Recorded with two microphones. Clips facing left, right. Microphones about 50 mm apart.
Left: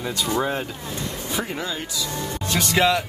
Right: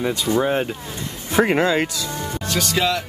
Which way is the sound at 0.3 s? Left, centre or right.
Centre.